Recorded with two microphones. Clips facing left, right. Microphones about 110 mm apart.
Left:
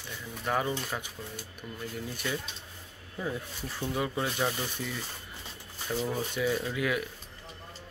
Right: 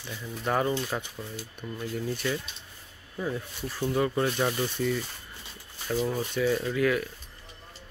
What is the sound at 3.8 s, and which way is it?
Speech, 10° left (ahead or behind).